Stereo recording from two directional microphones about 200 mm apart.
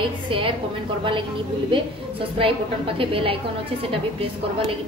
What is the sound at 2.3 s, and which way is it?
A woman's voice, 25° right (ahead or behind).